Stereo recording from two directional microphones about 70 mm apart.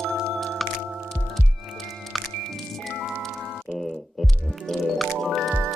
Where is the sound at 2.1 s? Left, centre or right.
Centre.